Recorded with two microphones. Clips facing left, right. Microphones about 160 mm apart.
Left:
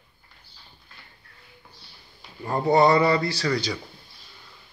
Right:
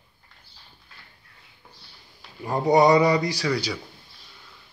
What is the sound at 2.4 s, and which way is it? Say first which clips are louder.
A man's voice: right 1 dB; 15° right (ahead or behind).